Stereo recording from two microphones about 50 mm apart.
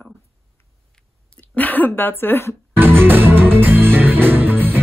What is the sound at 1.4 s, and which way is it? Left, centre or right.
Speech, left.